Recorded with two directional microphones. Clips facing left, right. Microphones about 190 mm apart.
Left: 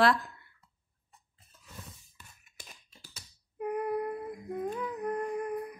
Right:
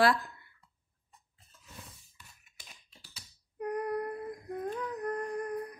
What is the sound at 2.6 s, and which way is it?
Computer keyboard, 50° left (ahead or behind).